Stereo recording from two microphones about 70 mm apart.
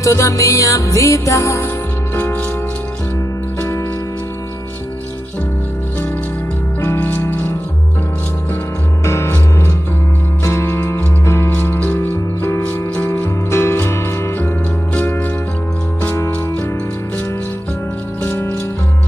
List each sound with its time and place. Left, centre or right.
0.0 s music: left
7.2 s music: left
9.0 s music: left
11.5 s music: left